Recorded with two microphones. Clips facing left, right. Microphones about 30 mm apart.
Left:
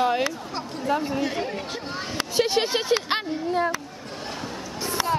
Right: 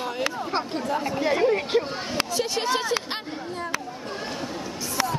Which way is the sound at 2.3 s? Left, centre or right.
Left.